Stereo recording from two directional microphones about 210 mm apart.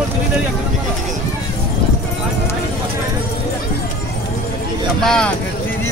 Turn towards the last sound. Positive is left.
turn(degrees=5)  # may be behind; listen again after turning